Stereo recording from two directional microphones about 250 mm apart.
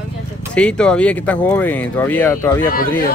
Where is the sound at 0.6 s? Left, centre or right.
Centre.